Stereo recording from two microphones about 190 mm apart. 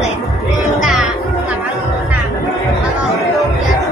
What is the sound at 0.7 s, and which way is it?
Music, 5° right (ahead or behind).